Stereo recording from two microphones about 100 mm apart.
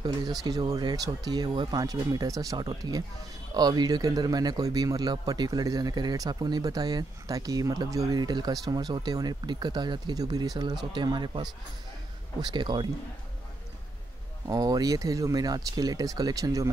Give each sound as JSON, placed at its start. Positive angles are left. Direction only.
{"t": 0.0, "sound": "a man's voice", "side_deg": -40}
{"t": 14.5, "sound": "a man's voice", "side_deg": -40}